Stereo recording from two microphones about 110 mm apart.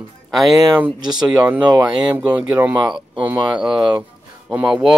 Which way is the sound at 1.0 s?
40° right (ahead or behind).